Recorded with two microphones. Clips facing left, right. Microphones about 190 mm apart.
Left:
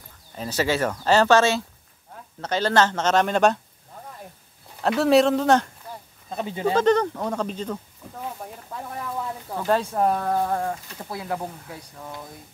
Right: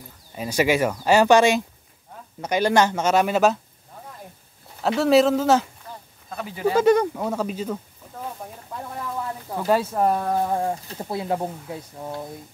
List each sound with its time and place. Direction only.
0.4 s speech: 15° right (ahead or behind)
4.8 s speech: centre (ahead or behind)
6.3 s speech: 25° left (ahead or behind)
6.7 s speech: 10° right (ahead or behind)
9.5 s speech: 10° right (ahead or behind)
10.5 s speech: 20° right (ahead or behind)